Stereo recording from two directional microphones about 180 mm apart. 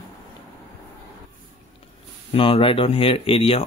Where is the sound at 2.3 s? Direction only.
30° left (ahead or behind).